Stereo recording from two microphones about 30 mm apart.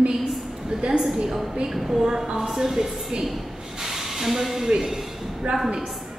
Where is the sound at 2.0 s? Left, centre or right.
Right.